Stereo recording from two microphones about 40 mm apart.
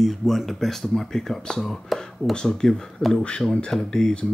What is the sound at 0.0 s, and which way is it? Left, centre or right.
Speech, centre.